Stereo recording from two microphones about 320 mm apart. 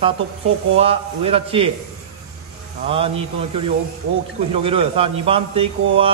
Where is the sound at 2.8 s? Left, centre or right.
Centre.